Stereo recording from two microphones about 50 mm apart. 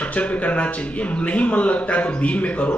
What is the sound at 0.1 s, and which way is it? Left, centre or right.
A woman's voice, left.